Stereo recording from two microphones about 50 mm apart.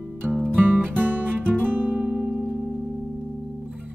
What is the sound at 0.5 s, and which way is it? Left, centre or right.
Music, right.